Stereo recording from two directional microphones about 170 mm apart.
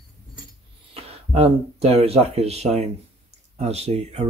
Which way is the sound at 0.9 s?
35° right (ahead or behind).